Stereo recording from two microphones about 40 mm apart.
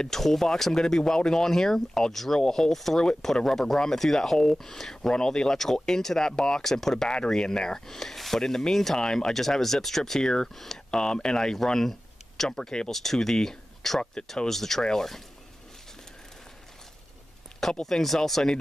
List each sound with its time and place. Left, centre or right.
0.0 s speech: centre
10.9 s speech: left
12.4 s speech: centre
12.9 s speech: centre
17.8 s speech: centre